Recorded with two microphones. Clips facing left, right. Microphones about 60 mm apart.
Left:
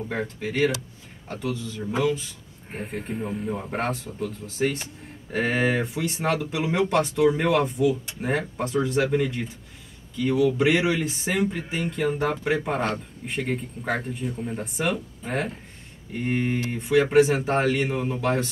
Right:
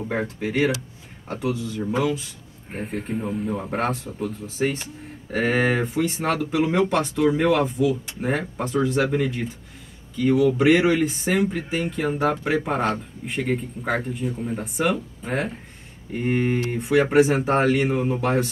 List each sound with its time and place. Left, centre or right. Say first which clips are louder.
0.1 s speech: right 4 dB; centre
16.1 s speech: right 3 dB; centre